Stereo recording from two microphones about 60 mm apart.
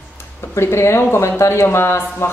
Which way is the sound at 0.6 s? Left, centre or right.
Left.